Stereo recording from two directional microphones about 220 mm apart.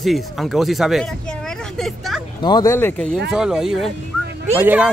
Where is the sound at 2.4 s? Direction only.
20° left (ahead or behind).